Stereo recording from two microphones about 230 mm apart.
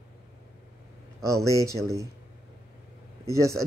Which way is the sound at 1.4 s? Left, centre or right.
Centre.